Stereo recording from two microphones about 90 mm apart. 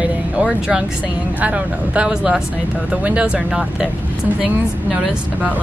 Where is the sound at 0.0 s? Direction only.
10° right (ahead or behind).